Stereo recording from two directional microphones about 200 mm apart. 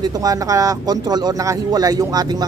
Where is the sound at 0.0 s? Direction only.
20° right (ahead or behind).